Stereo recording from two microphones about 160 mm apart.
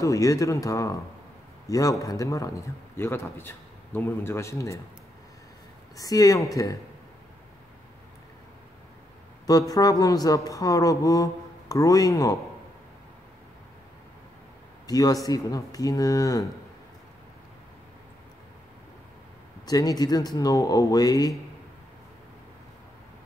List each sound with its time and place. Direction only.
0.0 s a man's voice: 20° left (ahead or behind)
5.9 s speech: 20° left (ahead or behind)
9.5 s speech: 25° left (ahead or behind)
14.9 s speech: 25° left (ahead or behind)
19.6 s speech: 25° left (ahead or behind)